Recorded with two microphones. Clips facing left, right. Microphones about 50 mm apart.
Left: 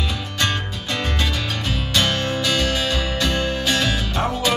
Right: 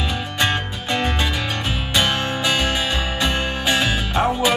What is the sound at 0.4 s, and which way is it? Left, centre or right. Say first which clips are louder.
Music: right 2 dB; centre.